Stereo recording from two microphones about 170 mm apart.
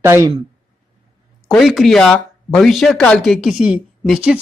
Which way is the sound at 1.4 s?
Centre (ahead or behind).